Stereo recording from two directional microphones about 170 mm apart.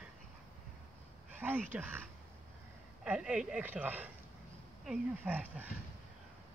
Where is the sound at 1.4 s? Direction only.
10° right (ahead or behind).